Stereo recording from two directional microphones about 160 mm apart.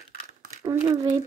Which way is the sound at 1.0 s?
35° right (ahead or behind).